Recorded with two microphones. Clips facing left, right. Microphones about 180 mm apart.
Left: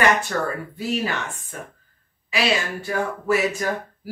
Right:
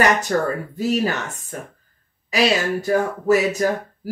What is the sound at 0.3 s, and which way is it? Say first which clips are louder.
Speech: right 5 dB; 35° right (ahead or behind).